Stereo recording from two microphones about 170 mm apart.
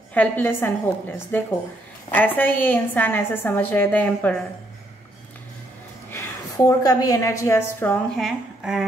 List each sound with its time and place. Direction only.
0.1 s a woman's voice: 10° left (ahead or behind)
6.0 s a woman's voice: 15° left (ahead or behind); by 8.8 s centre (ahead or behind)